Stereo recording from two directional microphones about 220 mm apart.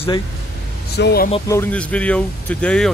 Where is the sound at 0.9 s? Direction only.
45° left (ahead or behind).